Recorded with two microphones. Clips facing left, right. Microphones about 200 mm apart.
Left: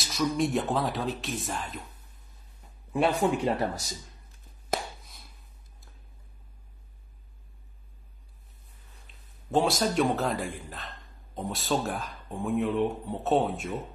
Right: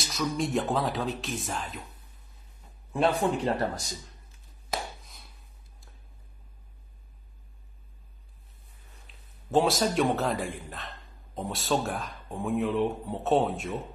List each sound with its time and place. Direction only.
0.0 s a man's voice: centre (ahead or behind)
2.9 s a man's voice: 10° left (ahead or behind)
5.0 s a sound: centre (ahead or behind)
9.5 s a man's voice: centre (ahead or behind)